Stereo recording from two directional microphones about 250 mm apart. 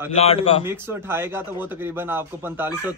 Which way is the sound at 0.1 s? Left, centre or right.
Left.